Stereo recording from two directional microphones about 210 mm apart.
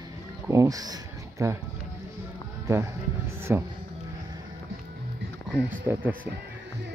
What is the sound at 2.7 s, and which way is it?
Speech, 10° right (ahead or behind).